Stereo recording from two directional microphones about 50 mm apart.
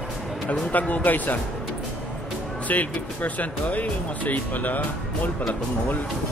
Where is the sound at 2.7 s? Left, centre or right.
Left.